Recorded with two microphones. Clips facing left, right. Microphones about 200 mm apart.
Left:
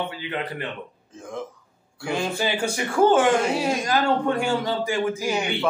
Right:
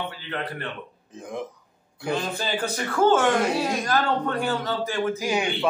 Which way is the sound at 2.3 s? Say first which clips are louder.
Left 3 dB; 10° left (ahead or behind).